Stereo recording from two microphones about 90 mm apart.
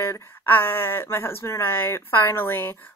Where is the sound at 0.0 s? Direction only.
25° left (ahead or behind).